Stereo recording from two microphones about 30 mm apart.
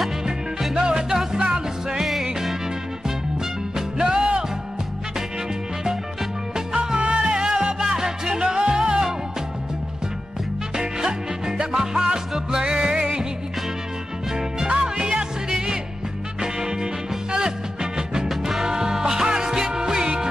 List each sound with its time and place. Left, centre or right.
0.7 s music: right
2.0 s music: centre
3.7 s music: right
7.0 s music: right
10.8 s music: right
14.7 s music: right